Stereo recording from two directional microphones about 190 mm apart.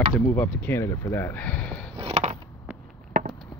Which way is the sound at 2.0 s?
35° right (ahead or behind).